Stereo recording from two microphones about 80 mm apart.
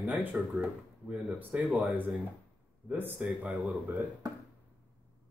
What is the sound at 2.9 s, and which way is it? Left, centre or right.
Speech, right.